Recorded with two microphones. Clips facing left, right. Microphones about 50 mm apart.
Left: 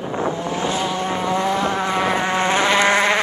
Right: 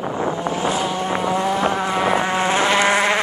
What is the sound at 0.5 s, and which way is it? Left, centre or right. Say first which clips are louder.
Vehicle: right 1 dB; centre.